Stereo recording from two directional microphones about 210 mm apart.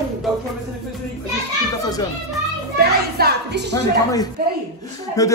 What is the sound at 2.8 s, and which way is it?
A woman's voice, 50° right (ahead or behind).